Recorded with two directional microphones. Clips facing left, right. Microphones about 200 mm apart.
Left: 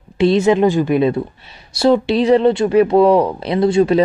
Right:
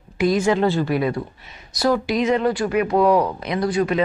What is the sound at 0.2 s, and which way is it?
A woman's voice, 25° left (ahead or behind).